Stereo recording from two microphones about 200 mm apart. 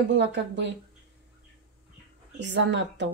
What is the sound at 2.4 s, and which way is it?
Speech, 60° right (ahead or behind).